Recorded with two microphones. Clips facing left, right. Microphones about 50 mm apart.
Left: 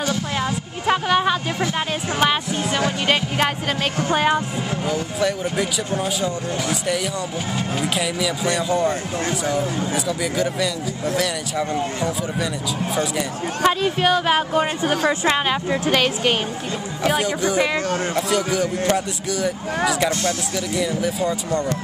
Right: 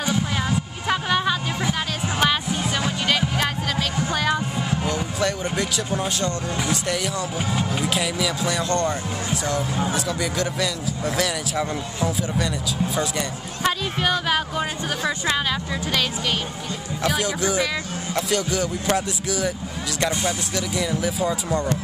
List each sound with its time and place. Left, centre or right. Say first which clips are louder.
0.8 s music: left 4 dB; centre
3.1 s music: left 1 dB; left
4.1 s a woman's voice: left 5 dB; left
4.8 s speech: left 4 dB; centre
13.7 s a woman's voice: left 4 dB; centre; by 16.3 s left
17.0 s speech: left 3 dB; centre
20.5 s speech: left 2 dB; centre